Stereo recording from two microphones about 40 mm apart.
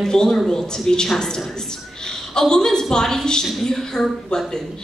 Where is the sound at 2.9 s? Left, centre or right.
Centre.